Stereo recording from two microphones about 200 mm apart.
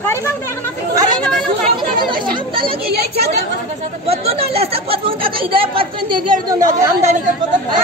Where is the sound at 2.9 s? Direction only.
55° right (ahead or behind).